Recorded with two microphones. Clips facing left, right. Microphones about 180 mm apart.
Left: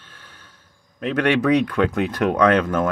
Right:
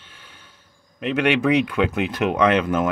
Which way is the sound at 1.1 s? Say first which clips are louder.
Left 1 dB; 10° right (ahead or behind).